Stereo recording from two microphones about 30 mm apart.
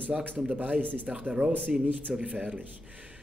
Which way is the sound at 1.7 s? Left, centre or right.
Right.